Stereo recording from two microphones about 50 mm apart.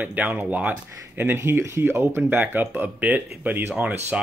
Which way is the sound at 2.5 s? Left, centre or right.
Right.